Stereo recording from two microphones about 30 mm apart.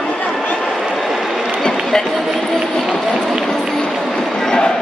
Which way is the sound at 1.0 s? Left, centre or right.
Centre.